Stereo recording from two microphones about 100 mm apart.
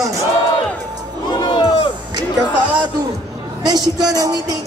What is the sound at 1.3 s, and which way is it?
Crowd, 50° left (ahead or behind).